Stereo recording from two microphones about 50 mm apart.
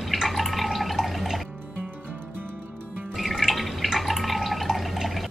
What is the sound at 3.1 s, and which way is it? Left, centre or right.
Drip, centre.